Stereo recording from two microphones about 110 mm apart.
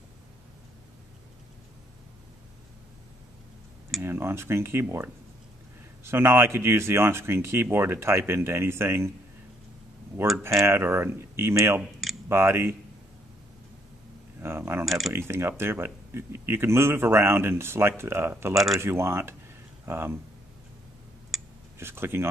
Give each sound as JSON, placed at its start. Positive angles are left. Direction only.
{"t": 4.0, "sound": "speech", "side_deg": -20}
{"t": 10.3, "sound": "speech", "side_deg": -25}
{"t": 14.4, "sound": "speech", "side_deg": -20}
{"t": 14.9, "sound": "speech", "side_deg": 0}
{"t": 15.1, "sound": "speech", "side_deg": -20}
{"t": 21.7, "sound": "speech", "side_deg": -20}